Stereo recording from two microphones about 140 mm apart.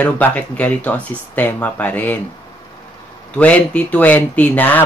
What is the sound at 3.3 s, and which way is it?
Speech, 10° left (ahead or behind).